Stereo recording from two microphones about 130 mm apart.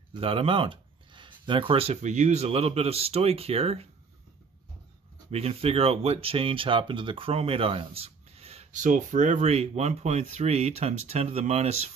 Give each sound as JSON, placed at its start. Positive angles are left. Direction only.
{"t": 0.1, "sound": "speech", "side_deg": -45}
{"t": 5.3, "sound": "speech", "side_deg": -50}
{"t": 8.7, "sound": "speech", "side_deg": -80}